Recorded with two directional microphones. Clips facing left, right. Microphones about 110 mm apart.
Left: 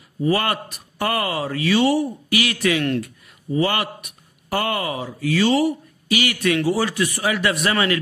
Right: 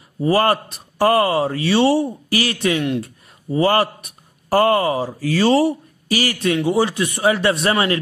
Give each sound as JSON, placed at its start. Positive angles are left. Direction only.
{"t": 0.2, "sound": "speech", "side_deg": -35}